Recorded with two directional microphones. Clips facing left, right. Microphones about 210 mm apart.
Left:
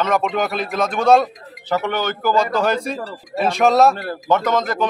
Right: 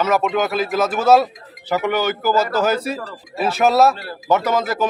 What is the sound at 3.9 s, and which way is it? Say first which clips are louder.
Speech: left 5 dB; 50° left (ahead or behind).